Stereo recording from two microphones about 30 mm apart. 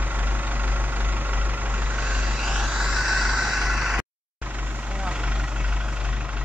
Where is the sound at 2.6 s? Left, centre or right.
Right.